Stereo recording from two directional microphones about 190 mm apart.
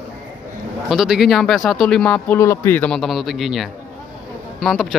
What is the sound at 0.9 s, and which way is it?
Speech, centre (ahead or behind).